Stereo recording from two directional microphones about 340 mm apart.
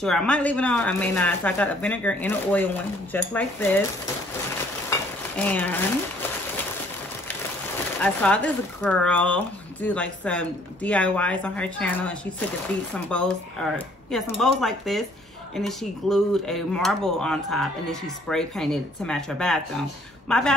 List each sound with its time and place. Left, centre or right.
0.0 s speech: centre
4.8 s a sound: centre
8.0 s a woman's voice: centre